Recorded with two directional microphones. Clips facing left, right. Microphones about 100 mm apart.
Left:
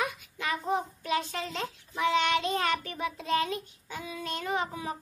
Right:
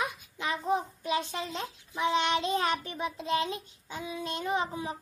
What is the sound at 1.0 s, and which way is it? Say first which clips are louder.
A child's voice: even; 20° right (ahead or behind).